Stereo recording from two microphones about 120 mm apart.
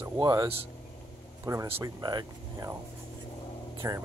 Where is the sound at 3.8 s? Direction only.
25° right (ahead or behind).